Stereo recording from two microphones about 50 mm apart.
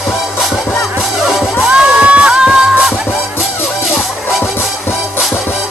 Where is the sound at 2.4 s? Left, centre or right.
Centre.